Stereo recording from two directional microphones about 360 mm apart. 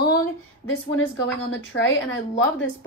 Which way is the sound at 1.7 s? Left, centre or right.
Left.